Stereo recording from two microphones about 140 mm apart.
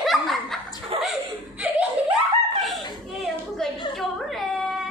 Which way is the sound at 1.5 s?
10° right (ahead or behind).